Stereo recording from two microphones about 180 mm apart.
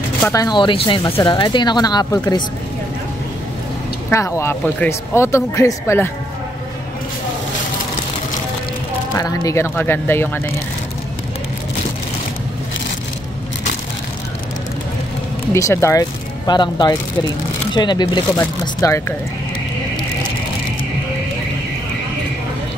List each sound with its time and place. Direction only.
0.3 s speech: 20° left (ahead or behind)
4.1 s speech: 15° left (ahead or behind)
9.1 s speech: 15° left (ahead or behind)
15.5 s speech: 15° left (ahead or behind)
18.3 s speech: 15° left (ahead or behind)